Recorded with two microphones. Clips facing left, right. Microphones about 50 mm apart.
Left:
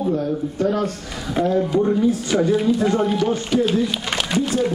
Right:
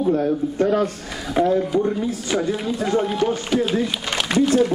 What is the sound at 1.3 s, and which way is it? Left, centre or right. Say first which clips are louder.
Speech: even; centre.